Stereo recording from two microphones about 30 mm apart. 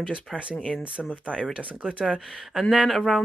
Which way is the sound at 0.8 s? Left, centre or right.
Right.